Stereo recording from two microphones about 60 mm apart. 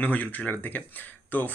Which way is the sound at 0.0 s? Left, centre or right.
Left.